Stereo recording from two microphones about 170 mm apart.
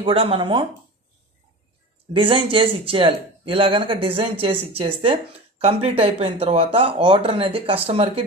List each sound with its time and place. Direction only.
0.0 s speech: 30° right (ahead or behind)
2.1 s speech: 30° right (ahead or behind)